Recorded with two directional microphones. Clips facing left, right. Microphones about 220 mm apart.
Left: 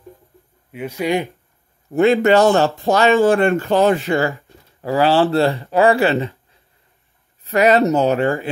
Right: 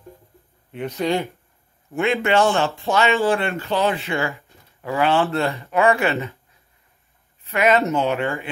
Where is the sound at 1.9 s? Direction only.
40° left (ahead or behind).